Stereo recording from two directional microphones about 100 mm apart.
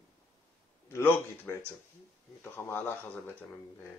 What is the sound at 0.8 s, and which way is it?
Speech, 25° left (ahead or behind).